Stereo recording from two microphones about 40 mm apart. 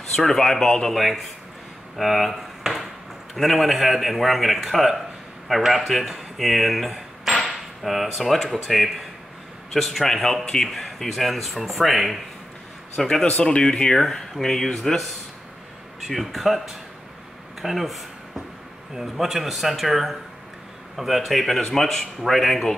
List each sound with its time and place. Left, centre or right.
0.1 s a man's voice: centre
0.8 s a man's voice: centre
6.3 s a sound: centre
8.5 s a man's voice: centre
10.7 s a man's voice: centre
12.9 s a man's voice: centre
13.9 s a man's voice: centre
16.1 s a man's voice: centre
17.6 s a sound: centre
18.9 s a man's voice: centre